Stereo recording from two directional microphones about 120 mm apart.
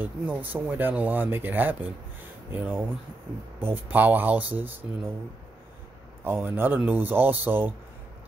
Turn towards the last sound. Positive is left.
turn(degrees=-15)  # may be behind; listen again after turning